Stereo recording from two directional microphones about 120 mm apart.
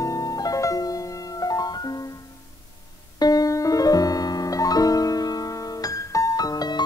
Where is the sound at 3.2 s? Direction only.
30° left (ahead or behind).